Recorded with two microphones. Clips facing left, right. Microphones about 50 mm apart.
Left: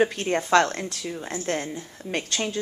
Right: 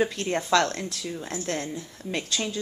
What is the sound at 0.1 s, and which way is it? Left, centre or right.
A woman's voice, left.